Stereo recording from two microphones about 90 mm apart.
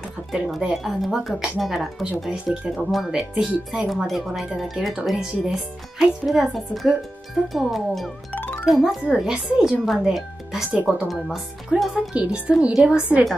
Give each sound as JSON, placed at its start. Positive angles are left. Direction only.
{"t": 0.6, "sound": "speech", "side_deg": -5}
{"t": 2.4, "sound": "a woman's voice", "side_deg": -10}
{"t": 2.7, "sound": "speech", "side_deg": 0}
{"t": 8.3, "sound": "music", "side_deg": 20}
{"t": 8.6, "sound": "speech", "side_deg": -5}
{"t": 11.9, "sound": "a woman's voice", "side_deg": -10}